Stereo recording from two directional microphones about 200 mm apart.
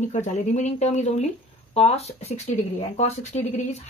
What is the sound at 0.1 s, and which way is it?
Speech, 35° left (ahead or behind).